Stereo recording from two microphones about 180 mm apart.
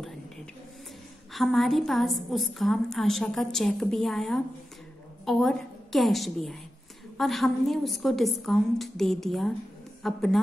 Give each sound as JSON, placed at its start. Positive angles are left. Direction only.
{"t": 1.3, "sound": "a woman's voice", "side_deg": 0}